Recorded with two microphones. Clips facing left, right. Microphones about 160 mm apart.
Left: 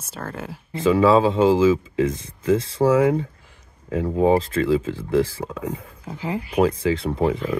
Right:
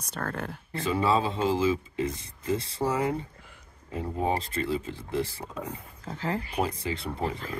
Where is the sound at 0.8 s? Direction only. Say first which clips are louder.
Left 10 dB; 90° left.